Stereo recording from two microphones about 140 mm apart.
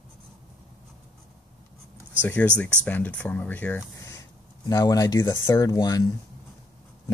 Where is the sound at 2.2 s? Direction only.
10° left (ahead or behind).